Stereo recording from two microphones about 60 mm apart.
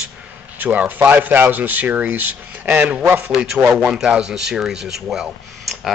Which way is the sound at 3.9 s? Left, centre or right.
Centre.